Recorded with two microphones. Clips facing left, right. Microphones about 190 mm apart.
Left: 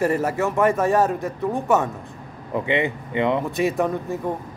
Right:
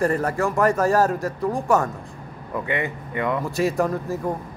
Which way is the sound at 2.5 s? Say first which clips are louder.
Left 4 dB; 25° left (ahead or behind).